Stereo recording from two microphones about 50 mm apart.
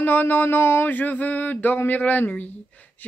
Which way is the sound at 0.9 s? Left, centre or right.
Left.